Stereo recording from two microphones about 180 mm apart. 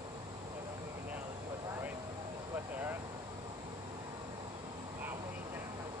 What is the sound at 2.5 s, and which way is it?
Vehicle, 10° right (ahead or behind).